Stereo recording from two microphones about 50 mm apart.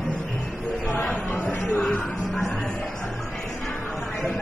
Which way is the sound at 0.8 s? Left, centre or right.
Left.